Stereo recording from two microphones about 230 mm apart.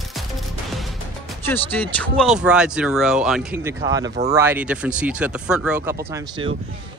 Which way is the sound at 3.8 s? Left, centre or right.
Centre.